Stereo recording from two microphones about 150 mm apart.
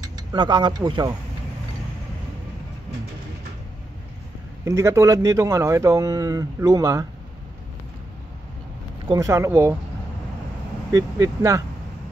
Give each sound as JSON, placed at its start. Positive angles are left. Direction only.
{"t": 0.0, "sound": "speech", "side_deg": -30}
{"t": 4.6, "sound": "speech", "side_deg": -20}
{"t": 9.0, "sound": "speech", "side_deg": -25}
{"t": 10.9, "sound": "speech", "side_deg": -25}